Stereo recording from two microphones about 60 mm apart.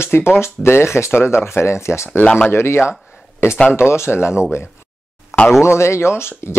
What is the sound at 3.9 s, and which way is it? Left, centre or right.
Speech, left.